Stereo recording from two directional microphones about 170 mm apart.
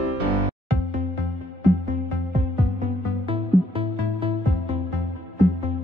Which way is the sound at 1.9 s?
45° right (ahead or behind).